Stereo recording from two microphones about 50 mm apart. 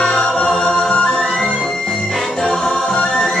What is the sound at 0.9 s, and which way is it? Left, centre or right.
Music, left.